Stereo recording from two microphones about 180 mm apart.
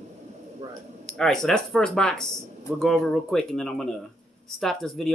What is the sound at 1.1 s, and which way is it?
Speech, 5° left (ahead or behind).